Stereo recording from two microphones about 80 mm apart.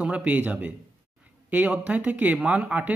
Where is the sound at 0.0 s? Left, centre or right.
Centre.